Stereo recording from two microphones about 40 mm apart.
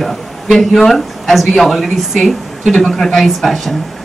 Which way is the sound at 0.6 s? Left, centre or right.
Centre.